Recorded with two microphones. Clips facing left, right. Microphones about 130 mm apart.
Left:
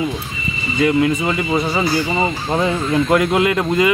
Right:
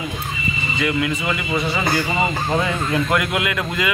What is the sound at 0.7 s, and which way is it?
Speech, 35° left (ahead or behind).